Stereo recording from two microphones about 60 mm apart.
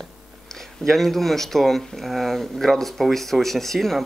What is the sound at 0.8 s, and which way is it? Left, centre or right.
Speech, centre.